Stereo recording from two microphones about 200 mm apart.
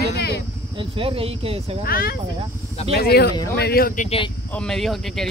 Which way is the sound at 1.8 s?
45° left (ahead or behind).